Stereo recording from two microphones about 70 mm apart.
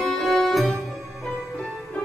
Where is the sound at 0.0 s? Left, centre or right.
Centre.